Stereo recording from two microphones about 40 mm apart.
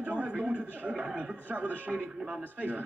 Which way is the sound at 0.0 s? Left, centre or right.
Right.